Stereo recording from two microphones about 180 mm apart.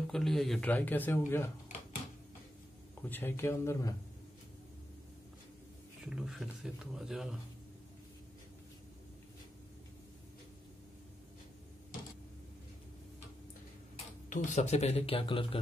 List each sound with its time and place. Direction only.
0.0 s speech: centre (ahead or behind)
3.0 s speech: 10° left (ahead or behind)
6.0 s speech: 5° right (ahead or behind)
14.3 s speech: 45° left (ahead or behind)